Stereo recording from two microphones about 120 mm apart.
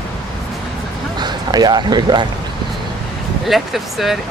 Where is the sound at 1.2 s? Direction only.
35° right (ahead or behind).